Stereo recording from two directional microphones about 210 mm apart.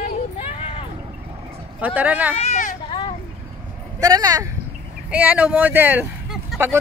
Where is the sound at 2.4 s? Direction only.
35° left (ahead or behind).